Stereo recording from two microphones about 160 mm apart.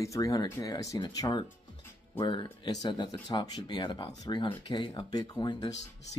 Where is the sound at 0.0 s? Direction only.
20° left (ahead or behind).